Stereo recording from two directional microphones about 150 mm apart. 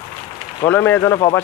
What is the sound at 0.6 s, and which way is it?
Speech, 15° left (ahead or behind).